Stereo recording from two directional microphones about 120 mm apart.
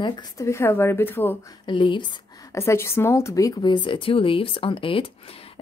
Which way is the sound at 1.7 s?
40° left (ahead or behind).